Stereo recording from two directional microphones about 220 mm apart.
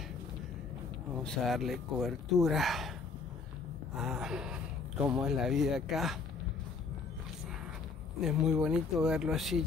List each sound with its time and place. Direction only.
1.1 s speech: centre (ahead or behind)
3.9 s gasp: centre (ahead or behind)
5.0 s speech: 5° right (ahead or behind)
8.2 s speech: centre (ahead or behind)